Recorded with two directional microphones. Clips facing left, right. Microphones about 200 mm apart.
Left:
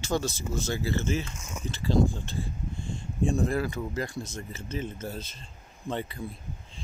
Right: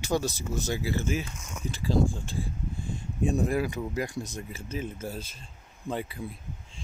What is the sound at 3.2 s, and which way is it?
Speech, 10° right (ahead or behind).